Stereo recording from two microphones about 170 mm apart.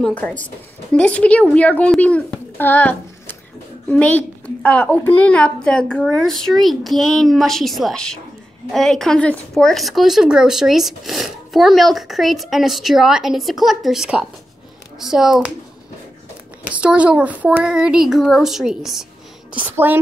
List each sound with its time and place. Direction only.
0.0 s a child's voice: 10° left (ahead or behind)
16.7 s speech: 5° right (ahead or behind)